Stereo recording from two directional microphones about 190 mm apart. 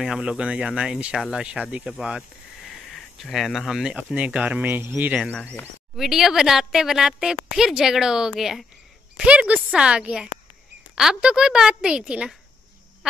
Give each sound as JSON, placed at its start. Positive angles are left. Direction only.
{"t": 0.0, "sound": "speech", "side_deg": -5}
{"t": 5.3, "sound": "speech", "side_deg": 10}